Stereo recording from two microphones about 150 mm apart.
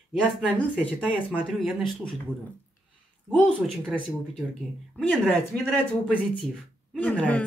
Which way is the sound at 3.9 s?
5° left (ahead or behind).